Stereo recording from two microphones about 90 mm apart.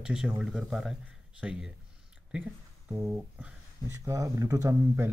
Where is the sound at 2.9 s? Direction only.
25° right (ahead or behind).